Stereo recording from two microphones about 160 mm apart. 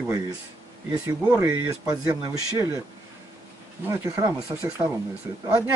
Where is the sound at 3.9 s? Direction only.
20° right (ahead or behind).